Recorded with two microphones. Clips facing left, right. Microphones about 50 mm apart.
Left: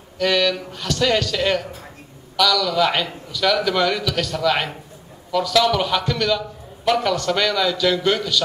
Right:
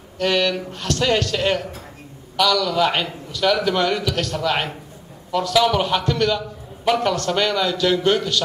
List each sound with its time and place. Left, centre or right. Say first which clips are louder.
0.2 s a man's voice: left 1 dB; centre